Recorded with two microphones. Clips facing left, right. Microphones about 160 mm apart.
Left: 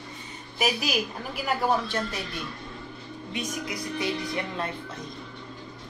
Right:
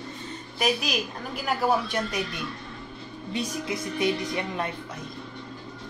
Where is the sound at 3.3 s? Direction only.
30° right (ahead or behind).